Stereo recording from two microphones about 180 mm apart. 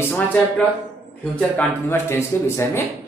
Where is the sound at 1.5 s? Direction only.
10° left (ahead or behind).